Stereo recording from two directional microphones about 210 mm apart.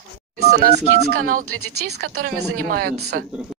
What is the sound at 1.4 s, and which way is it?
Speech, 90° right.